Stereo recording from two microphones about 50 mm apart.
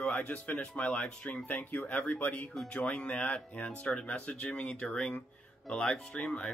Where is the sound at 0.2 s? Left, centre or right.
Left.